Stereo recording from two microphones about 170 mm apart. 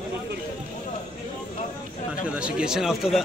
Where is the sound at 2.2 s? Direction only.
5° right (ahead or behind).